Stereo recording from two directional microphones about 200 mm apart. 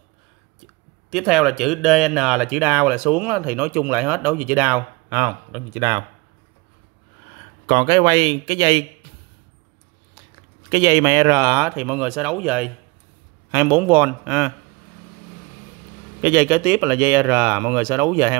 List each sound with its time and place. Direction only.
1.1 s speech: centre (ahead or behind)
7.6 s speech: 25° right (ahead or behind)
10.7 s speech: 15° right (ahead or behind)
16.2 s speech: 10° right (ahead or behind)